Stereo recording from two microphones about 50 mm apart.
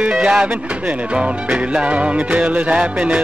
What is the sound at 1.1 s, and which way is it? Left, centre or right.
Music, right.